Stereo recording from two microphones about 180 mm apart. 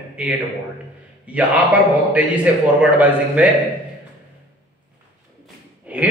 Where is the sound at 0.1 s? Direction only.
10° right (ahead or behind).